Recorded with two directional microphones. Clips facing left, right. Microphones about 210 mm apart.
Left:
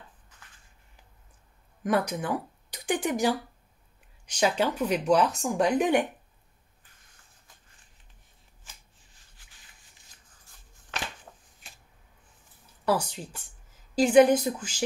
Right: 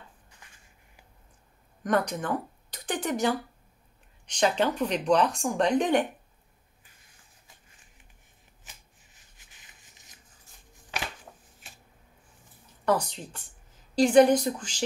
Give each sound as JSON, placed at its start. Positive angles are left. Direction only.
{"t": 1.8, "sound": "speech", "side_deg": 5}
{"t": 9.4, "sound": "a sound", "side_deg": -20}
{"t": 12.8, "sound": "speech", "side_deg": 5}